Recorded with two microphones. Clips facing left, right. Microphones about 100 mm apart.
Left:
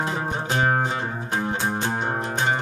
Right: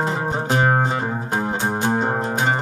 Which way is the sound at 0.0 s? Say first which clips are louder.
Right 4 dB; 30° right (ahead or behind).